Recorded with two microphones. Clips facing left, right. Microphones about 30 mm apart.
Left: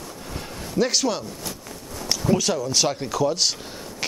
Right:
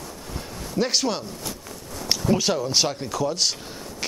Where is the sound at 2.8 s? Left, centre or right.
Centre.